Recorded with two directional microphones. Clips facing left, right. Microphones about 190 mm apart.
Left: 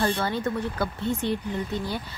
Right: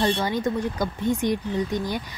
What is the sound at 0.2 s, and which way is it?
Speech, 15° right (ahead or behind).